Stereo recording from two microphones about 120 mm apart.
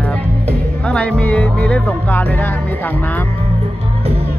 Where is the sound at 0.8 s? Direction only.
10° left (ahead or behind).